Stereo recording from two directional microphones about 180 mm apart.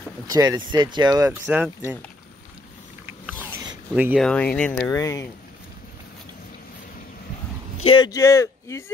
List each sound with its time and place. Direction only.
0.3 s speech: 20° right (ahead or behind)
3.1 s a sound: 10° right (ahead or behind)
3.9 s speech: 5° right (ahead or behind)
4.3 s speech: 5° left (ahead or behind)
4.9 s speech: 15° left (ahead or behind)
7.8 s speech: 25° left (ahead or behind)